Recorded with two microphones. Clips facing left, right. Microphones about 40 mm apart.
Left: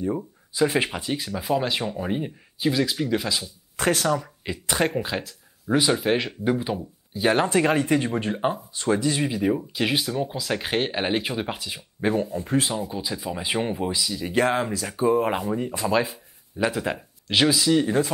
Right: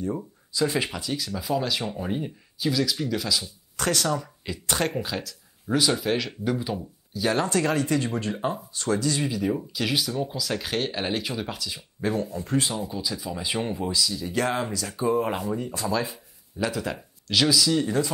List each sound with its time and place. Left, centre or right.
0.5 s speech: left